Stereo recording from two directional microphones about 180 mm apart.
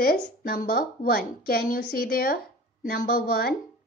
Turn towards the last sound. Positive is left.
turn(degrees=55)  # may be behind; listen again after turning